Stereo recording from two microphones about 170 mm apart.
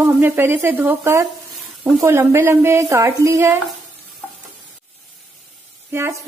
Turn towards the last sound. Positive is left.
turn(degrees=-15)  # may be behind; listen again after turning